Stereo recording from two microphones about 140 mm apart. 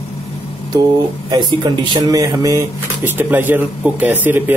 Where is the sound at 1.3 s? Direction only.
30° right (ahead or behind).